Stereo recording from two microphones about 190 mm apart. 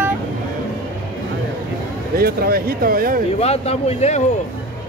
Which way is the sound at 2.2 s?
55° right (ahead or behind).